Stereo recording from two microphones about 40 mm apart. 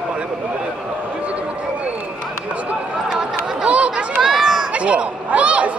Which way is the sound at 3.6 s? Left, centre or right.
Right.